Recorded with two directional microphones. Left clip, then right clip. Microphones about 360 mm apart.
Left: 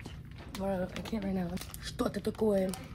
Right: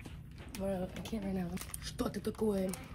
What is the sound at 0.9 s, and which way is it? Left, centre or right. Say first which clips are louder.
Speech: left 4 dB; centre.